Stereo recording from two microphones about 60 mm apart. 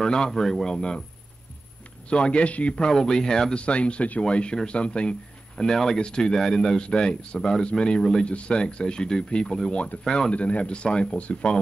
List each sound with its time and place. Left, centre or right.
0.0 s speech: centre
2.0 s speech: centre
2.7 s speech: centre
10.3 s speech: left